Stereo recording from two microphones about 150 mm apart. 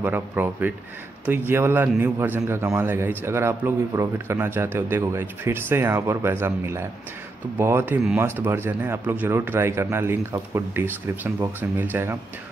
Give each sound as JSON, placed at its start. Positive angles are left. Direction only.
{"t": 0.0, "sound": "speech", "side_deg": -10}